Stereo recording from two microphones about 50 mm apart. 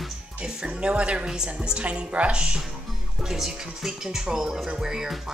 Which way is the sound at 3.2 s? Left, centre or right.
Centre.